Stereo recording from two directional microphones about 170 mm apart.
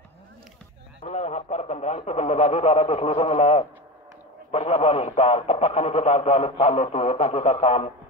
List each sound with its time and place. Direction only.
1.0 s speech: 40° left (ahead or behind)